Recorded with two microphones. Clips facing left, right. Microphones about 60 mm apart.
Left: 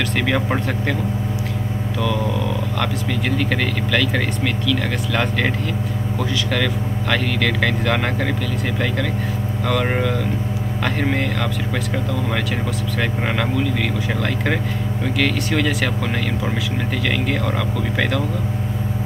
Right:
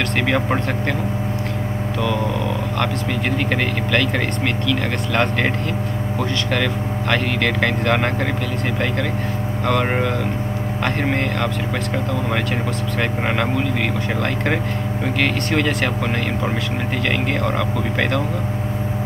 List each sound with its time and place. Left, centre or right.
0.2 s speech: centre
3.3 s speech: centre
6.5 s speech: centre
9.7 s speech: centre
13.4 s speech: centre
17.1 s speech: centre